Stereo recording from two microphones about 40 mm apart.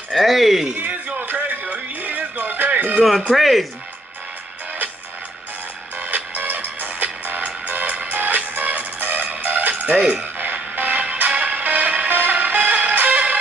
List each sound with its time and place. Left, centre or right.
0.1 s speech: centre
0.7 s a sound: right
1.2 s music: right
3.0 s speech: centre
6.0 s music: right
9.9 s speech: centre
10.4 s music: right